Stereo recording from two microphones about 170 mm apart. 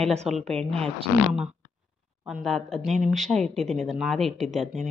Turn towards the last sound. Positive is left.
turn(degrees=0)  # may be behind; listen again after turning